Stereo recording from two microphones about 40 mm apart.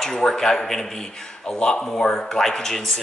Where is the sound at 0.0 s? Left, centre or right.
Centre.